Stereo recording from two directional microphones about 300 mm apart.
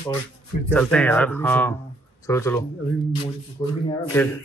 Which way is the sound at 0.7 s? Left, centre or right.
Centre.